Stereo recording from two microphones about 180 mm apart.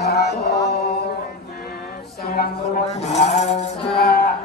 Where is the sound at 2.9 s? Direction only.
40° left (ahead or behind).